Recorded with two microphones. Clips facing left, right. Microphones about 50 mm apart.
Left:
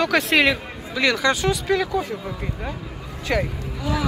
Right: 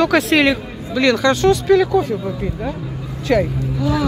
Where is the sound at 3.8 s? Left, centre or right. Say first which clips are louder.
Right 6 dB; left.